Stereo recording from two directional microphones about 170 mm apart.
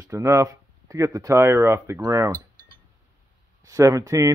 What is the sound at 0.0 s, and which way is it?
Speech, 15° right (ahead or behind).